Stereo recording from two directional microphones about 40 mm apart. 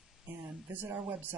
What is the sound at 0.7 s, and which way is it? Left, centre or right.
Speech, right.